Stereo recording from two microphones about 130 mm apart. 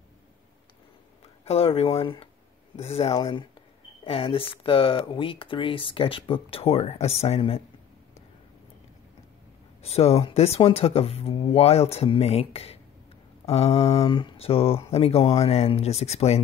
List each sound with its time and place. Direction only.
1.4 s speech: 50° left (ahead or behind)
9.8 s speech: 50° left (ahead or behind)
13.9 s speech: 40° left (ahead or behind); by 16.3 s 55° left (ahead or behind)